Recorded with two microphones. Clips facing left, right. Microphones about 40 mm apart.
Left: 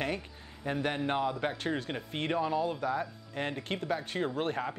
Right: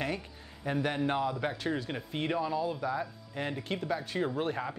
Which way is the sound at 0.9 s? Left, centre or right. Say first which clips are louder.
Even; left.